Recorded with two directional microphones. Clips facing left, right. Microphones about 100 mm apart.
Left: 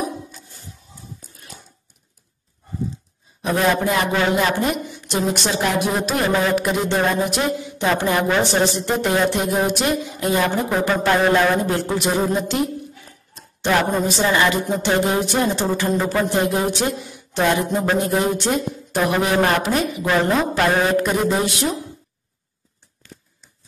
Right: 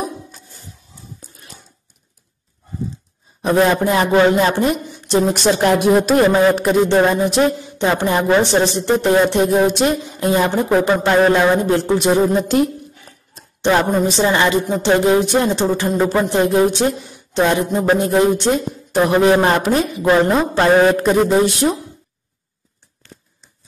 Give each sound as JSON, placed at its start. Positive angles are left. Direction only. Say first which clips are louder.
{"t": 3.4, "sound": "speech", "louder": "right 4 dB", "side_deg": -35}
{"t": 6.3, "sound": "a woman's voice", "louder": "right 6 dB", "side_deg": -30}
{"t": 13.3, "sound": "a woman's voice", "louder": "right 4 dB", "side_deg": -30}